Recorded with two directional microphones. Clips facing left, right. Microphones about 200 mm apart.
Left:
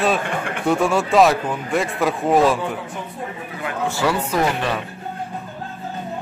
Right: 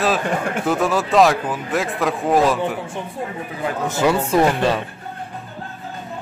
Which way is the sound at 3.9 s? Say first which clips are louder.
Right 4 dB; 20° right (ahead or behind).